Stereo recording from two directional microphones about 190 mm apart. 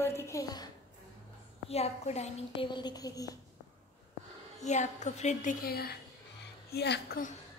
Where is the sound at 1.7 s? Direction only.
35° left (ahead or behind); by 3.3 s 20° left (ahead or behind).